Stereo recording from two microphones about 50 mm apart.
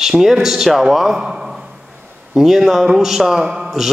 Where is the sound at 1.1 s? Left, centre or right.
Centre.